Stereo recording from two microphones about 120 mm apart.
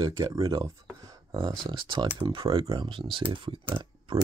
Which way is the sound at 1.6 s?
40° right (ahead or behind).